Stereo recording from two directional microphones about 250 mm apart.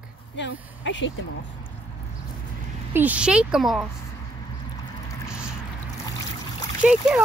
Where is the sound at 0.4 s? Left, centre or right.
Left.